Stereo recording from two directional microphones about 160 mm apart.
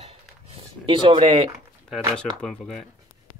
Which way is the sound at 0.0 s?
35° right (ahead or behind).